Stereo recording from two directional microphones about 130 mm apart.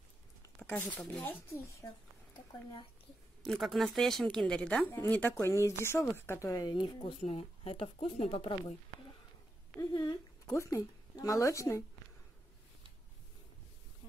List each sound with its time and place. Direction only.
0.6 s speech: 15° left (ahead or behind)
3.4 s speech: centre (ahead or behind); by 8.7 s 45° left (ahead or behind)
9.8 s speech: 30° left (ahead or behind)